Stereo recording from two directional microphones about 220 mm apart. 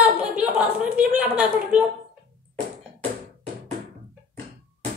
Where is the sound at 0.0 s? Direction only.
5° right (ahead or behind).